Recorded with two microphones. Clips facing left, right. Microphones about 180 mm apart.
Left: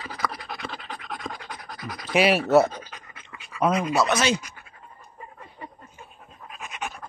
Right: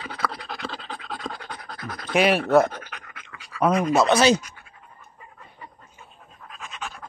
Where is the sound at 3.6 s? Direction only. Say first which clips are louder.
Right 2 dB; 10° left (ahead or behind).